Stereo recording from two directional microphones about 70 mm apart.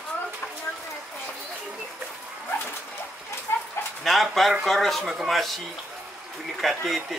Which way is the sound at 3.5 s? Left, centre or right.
Left.